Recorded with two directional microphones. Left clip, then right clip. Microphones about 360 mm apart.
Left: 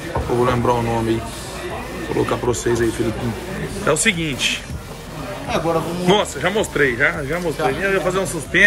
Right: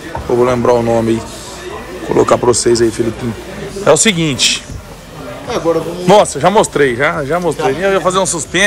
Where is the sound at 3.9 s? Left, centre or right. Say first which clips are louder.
Right 8 dB; centre.